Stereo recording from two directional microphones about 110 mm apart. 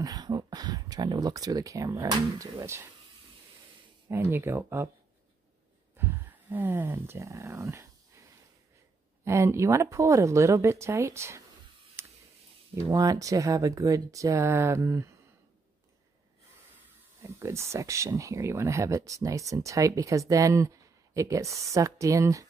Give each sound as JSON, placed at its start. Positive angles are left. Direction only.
{"t": 0.0, "sound": "speech", "side_deg": -35}
{"t": 2.6, "sound": "speech", "side_deg": -25}
{"t": 4.1, "sound": "speech", "side_deg": -20}
{"t": 5.9, "sound": "speech", "side_deg": -20}
{"t": 9.2, "sound": "speech", "side_deg": -25}
{"t": 12.0, "sound": "a sound", "side_deg": -25}
{"t": 12.7, "sound": "speech", "side_deg": -30}
{"t": 17.2, "sound": "speech", "side_deg": -25}